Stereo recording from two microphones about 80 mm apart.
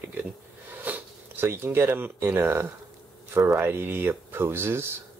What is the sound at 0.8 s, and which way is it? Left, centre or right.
Speech, right.